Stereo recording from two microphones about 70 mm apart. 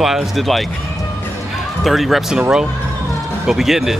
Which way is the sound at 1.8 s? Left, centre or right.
Centre.